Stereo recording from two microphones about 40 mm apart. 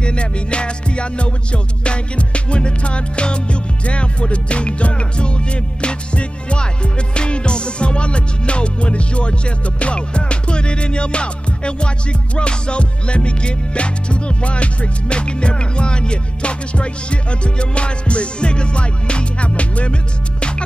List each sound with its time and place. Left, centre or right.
0.0 s music: left